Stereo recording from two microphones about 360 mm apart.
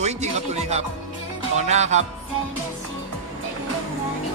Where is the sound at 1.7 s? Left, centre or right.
Centre.